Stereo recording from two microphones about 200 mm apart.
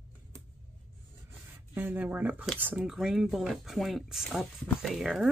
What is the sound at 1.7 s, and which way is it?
Speech, 10° right (ahead or behind).